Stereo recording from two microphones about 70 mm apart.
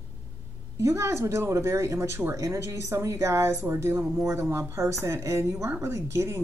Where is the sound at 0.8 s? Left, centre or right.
Right.